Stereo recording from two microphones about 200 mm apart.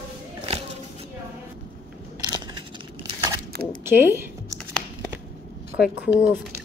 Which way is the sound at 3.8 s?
10° right (ahead or behind).